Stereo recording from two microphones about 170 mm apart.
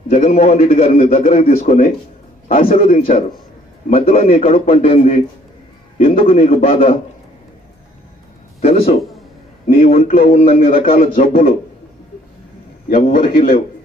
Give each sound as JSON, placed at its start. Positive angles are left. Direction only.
{"t": 0.1, "sound": "a man's voice", "side_deg": 40}
{"t": 8.5, "sound": "a man's voice", "side_deg": 35}
{"t": 12.9, "sound": "a man's voice", "side_deg": 50}